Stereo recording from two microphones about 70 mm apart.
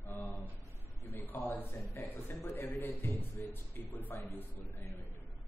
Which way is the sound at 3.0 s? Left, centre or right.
Left.